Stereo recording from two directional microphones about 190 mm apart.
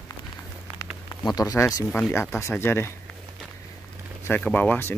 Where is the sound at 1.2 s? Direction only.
20° left (ahead or behind).